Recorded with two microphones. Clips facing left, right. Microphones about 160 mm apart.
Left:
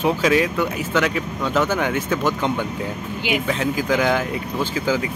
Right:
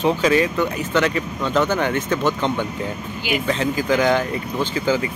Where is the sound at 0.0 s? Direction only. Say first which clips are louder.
Right 1 dB; 5° left (ahead or behind).